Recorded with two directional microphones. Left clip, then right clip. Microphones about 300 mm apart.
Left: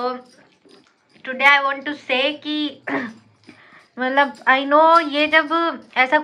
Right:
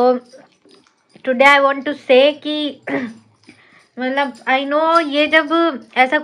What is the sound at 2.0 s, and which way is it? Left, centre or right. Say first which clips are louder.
A woman's voice: right 9 dB; centre.